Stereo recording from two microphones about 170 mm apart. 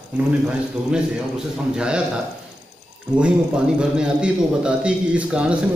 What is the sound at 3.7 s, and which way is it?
A man's voice, 5° right (ahead or behind).